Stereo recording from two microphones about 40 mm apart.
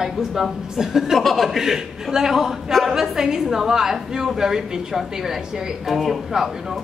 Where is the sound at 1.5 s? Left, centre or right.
Centre.